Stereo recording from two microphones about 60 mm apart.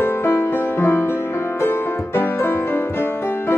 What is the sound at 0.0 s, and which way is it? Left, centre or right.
Music, left.